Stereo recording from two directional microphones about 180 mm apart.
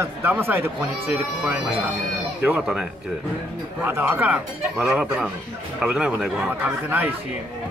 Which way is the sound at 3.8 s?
10° right (ahead or behind).